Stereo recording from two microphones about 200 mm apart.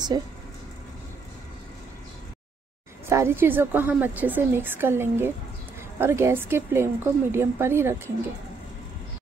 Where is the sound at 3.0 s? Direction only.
10° right (ahead or behind).